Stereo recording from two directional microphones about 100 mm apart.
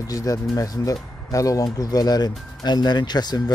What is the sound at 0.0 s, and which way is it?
Speech, 35° left (ahead or behind).